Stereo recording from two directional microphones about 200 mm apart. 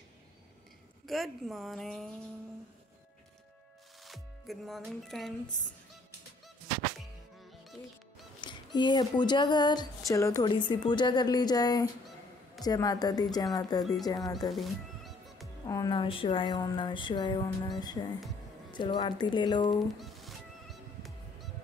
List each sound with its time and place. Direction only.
1.0 s a woman's voice: centre (ahead or behind)
4.0 s music: centre (ahead or behind)
8.4 s speech: 20° left (ahead or behind)
14.5 s music: centre (ahead or behind)
15.6 s speech: 20° left (ahead or behind)
20.0 s music: centre (ahead or behind)